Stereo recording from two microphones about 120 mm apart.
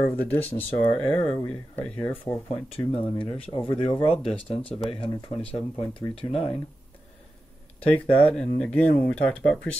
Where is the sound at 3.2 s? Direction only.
45° left (ahead or behind).